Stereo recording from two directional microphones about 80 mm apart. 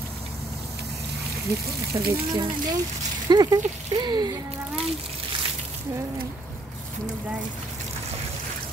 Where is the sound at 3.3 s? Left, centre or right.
Right.